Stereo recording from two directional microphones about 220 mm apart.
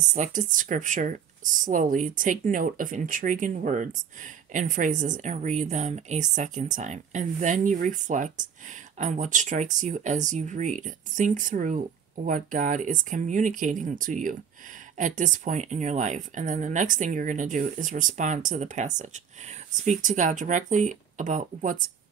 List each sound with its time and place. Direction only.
0.1 s speech: 35° right (ahead or behind)